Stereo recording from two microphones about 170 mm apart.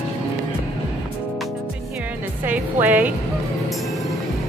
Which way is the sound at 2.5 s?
10° right (ahead or behind).